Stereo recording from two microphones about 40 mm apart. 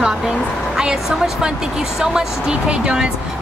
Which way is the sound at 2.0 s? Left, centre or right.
Centre.